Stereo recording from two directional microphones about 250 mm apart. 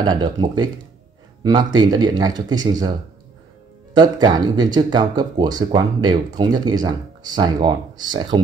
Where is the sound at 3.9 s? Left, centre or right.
Centre.